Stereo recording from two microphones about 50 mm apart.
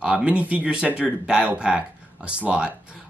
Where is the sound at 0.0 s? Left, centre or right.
Right.